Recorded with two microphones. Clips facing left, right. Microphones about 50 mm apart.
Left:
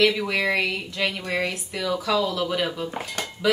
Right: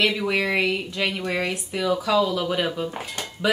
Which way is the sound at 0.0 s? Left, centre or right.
Centre.